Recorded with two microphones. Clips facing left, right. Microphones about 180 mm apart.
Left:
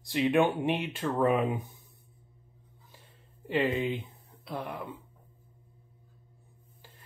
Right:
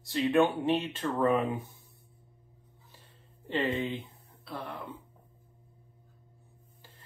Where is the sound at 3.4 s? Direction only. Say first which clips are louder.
Left 2 dB; 10° left (ahead or behind).